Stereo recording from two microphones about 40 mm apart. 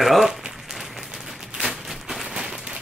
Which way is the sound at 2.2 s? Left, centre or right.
Centre.